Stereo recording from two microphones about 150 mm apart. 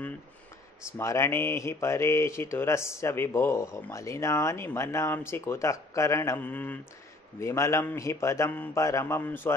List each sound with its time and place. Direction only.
0.9 s speech: 20° left (ahead or behind)